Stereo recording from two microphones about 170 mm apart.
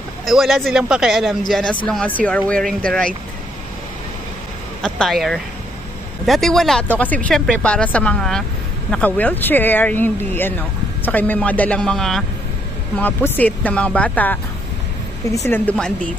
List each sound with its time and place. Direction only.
0.2 s speech: centre (ahead or behind)
4.8 s speech: 5° left (ahead or behind)